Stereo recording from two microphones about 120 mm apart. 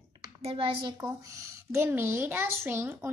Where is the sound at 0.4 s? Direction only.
50° right (ahead or behind).